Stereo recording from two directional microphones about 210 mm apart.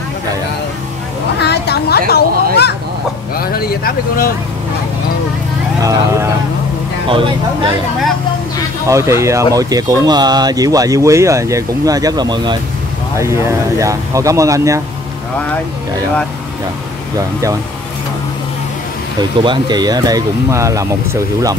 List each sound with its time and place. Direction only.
1.4 s a sound: 50° left (ahead or behind)
3.3 s speech: 45° left (ahead or behind)
5.8 s speech: 15° right (ahead or behind)
8.8 s speech: 15° right (ahead or behind)
19.4 s speech: 20° right (ahead or behind)